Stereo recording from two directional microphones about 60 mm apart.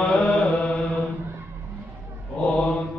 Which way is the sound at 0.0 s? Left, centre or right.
Centre.